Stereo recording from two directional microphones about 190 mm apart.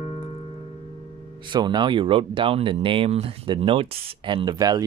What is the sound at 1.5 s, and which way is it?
Speech, 25° right (ahead or behind).